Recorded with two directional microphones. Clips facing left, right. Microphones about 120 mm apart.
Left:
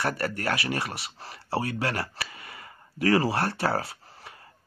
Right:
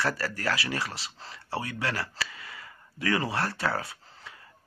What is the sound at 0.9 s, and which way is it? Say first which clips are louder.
Speech: left 3 dB; 60° left (ahead or behind).